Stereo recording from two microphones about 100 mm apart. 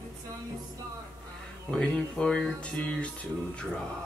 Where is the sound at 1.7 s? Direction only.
10° left (ahead or behind).